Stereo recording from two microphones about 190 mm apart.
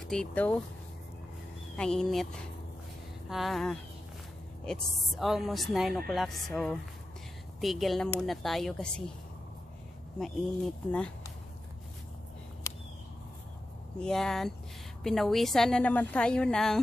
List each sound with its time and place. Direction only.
0.1 s speech: 5° left (ahead or behind)
1.8 s speech: 5° left (ahead or behind)
3.3 s speech: centre (ahead or behind)
10.1 s speech: centre (ahead or behind)
12.7 s a sound: 15° left (ahead or behind)
13.9 s speech: 5° left (ahead or behind)